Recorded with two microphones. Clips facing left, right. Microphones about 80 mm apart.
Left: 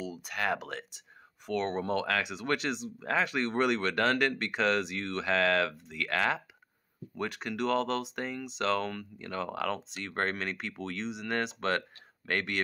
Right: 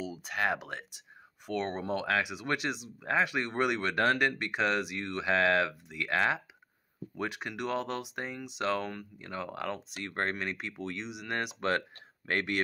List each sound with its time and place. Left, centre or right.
0.0 s speech: right